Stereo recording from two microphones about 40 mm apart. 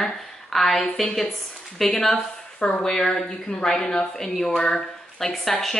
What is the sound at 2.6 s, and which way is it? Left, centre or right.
Speech, left.